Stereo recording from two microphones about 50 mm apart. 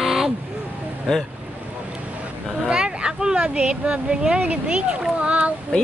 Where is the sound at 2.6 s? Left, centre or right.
Centre.